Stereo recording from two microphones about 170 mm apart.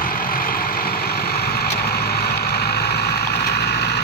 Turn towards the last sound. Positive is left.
turn(degrees=75)  # may be behind; listen again after turning